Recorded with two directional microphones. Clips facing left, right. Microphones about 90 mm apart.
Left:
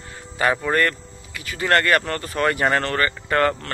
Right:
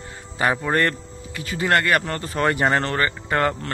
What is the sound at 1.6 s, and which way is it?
Speech, 10° right (ahead or behind).